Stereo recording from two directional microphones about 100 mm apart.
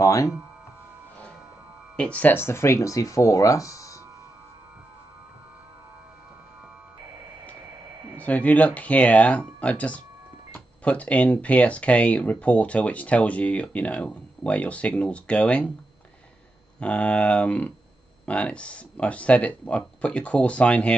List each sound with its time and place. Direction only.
0.0 s speech: 30° left (ahead or behind)
2.0 s speech: 10° left (ahead or behind)
2.3 s speech: 25° left (ahead or behind)
8.2 s speech: 15° left (ahead or behind)
16.8 s speech: 10° left (ahead or behind)